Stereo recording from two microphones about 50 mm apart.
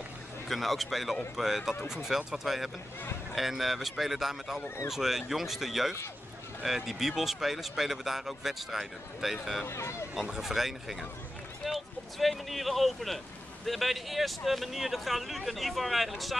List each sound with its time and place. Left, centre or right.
0.5 s speech: centre
9.7 s speech: left
10.3 s speech: centre